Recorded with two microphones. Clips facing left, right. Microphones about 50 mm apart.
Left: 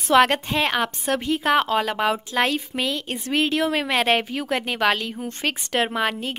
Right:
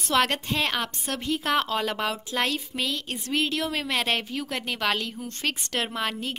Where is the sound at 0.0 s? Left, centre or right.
Left.